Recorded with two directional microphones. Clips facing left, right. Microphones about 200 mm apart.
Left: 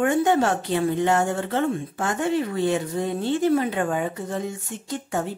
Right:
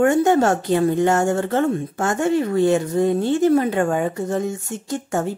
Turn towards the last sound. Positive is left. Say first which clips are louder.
# right 4 dB
turn(degrees=-45)  # may be behind; listen again after turning